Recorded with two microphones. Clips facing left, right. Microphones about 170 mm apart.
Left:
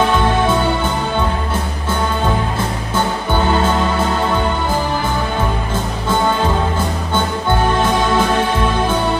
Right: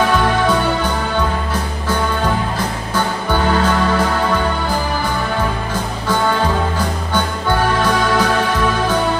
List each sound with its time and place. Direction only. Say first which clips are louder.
7.4 s music: even; 25° left (ahead or behind)